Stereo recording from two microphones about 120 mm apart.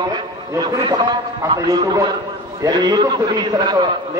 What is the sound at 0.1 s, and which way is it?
A man's voice, 35° right (ahead or behind).